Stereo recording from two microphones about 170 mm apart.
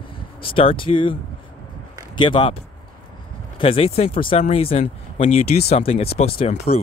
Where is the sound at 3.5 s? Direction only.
35° left (ahead or behind).